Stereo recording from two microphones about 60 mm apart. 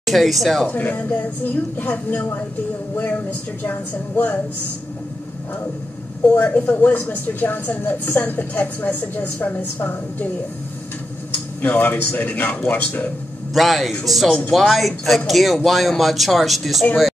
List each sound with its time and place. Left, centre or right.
0.0 s speech: centre
0.7 s a woman's voice: left
3.3 s speech: left
6.2 s speech: left
11.7 s speech: left
13.5 s speech: centre